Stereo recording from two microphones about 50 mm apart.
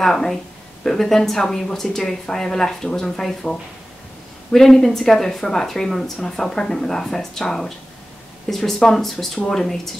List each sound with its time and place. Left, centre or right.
0.0 s speech: centre